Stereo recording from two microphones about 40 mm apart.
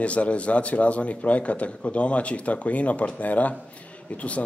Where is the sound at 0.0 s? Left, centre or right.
Left.